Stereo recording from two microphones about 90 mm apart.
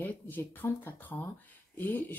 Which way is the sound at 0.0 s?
20° left (ahead or behind).